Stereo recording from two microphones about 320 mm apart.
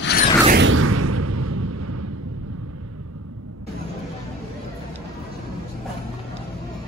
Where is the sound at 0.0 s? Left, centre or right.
Left.